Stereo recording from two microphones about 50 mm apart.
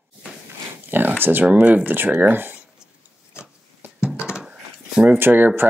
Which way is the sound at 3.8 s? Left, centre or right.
Right.